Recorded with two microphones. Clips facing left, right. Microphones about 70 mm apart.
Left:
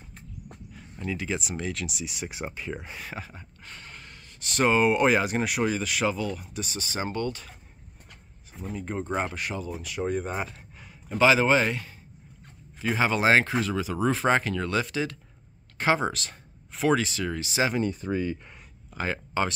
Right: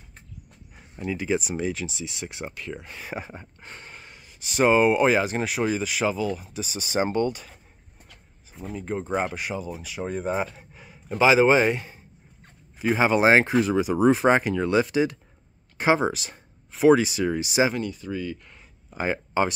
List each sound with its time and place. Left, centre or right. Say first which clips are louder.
0.7 s speech: right 3 dB; centre
1.9 s speech: even; centre
3.2 s speech: right 4 dB; right; by 6.8 s centre
6.8 s speech: right 7 dB; right
8.5 s speech: right 2 dB; centre; by 12.0 s right
12.7 s a sound: right 4 dB; centre
13.0 s speech: right 3 dB; centre
17.8 s speech: left 2 dB; left
18.9 s speech: right 4 dB; centre